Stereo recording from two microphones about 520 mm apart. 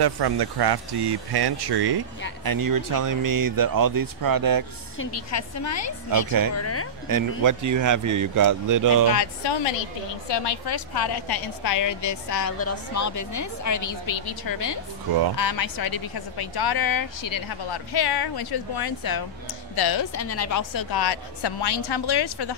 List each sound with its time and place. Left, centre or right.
0.0 s speech: right
4.9 s a woman's voice: left
7.1 s speech: right
9.2 s a woman's voice: left
20.2 s speech: left